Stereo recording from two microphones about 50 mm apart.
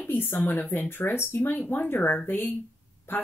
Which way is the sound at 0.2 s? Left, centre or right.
Left.